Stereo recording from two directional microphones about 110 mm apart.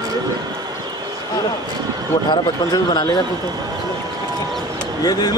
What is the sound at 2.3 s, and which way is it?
Speech, 40° left (ahead or behind).